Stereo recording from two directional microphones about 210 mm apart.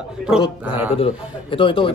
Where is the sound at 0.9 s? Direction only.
25° left (ahead or behind).